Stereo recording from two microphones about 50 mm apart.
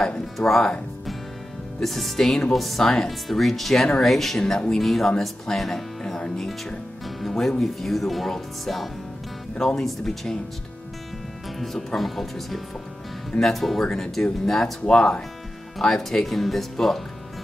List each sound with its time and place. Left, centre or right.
0.0 s music: centre
1.8 s speech: centre
11.6 s speech: centre